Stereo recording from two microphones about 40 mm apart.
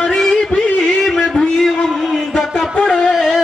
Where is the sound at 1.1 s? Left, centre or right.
Centre.